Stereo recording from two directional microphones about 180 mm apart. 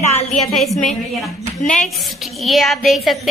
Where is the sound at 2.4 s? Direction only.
Centre (ahead or behind).